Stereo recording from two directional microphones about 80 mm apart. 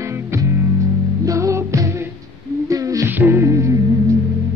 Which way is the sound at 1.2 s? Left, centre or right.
Right.